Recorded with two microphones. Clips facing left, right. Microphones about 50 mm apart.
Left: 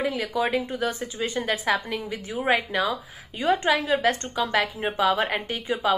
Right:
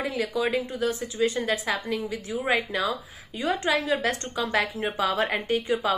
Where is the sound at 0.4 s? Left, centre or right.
Left.